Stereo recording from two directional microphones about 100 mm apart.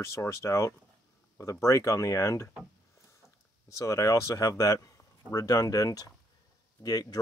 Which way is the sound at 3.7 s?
30° left (ahead or behind).